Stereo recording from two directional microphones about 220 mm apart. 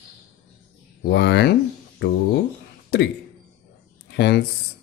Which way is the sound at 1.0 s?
50° left (ahead or behind).